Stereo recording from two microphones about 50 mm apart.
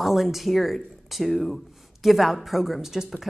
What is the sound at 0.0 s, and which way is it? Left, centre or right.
Speech, centre.